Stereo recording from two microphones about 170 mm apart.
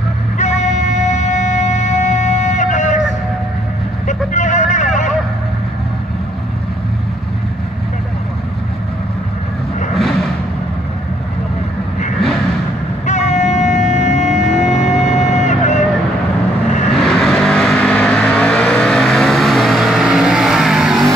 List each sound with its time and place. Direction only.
0.4 s music: 45° left (ahead or behind)
4.1 s vehicle: 45° left (ahead or behind)
13.0 s a sound: 45° left (ahead or behind)
16.9 s vehicle: centre (ahead or behind)